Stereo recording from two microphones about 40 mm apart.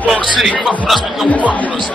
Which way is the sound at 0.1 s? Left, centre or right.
Centre.